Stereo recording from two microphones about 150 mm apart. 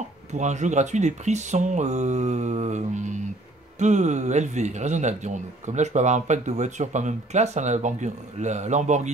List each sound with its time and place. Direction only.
0.3 s a man's voice: 50° right (ahead or behind)